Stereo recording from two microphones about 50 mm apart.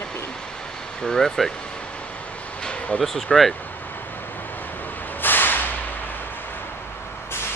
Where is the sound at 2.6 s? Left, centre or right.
Left.